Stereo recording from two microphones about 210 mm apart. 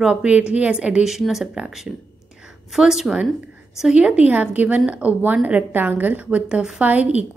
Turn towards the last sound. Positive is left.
turn(degrees=-5)  # may be behind; listen again after turning